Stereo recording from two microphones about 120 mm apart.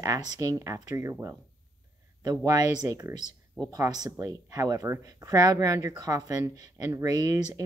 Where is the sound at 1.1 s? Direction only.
15° right (ahead or behind).